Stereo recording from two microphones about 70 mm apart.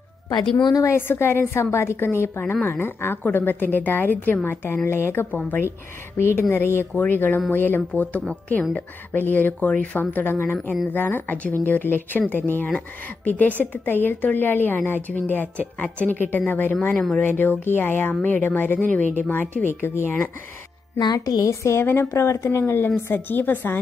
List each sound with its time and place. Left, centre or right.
0.6 s a woman's voice: left
0.8 s a woman's voice: left
21.0 s a woman's voice: left
21.5 s a woman's voice: left